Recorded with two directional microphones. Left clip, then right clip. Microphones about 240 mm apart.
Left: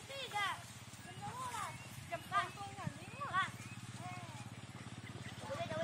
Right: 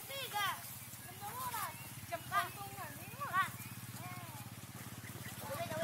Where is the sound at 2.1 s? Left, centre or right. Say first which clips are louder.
Right 1 dB; centre.